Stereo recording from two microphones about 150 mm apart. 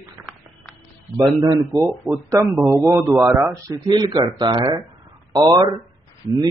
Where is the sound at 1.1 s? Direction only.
25° right (ahead or behind).